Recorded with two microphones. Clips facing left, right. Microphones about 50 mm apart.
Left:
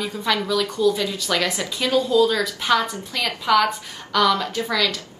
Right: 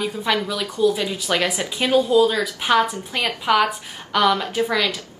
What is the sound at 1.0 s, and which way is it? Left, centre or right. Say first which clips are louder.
A woman's voice: right 1 dB; right.